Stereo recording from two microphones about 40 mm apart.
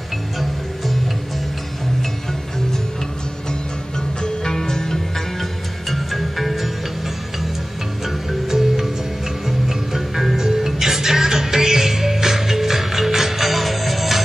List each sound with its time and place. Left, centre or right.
0.4 s music: centre
4.2 s music: centre
5.9 s music: centre
8.0 s music: centre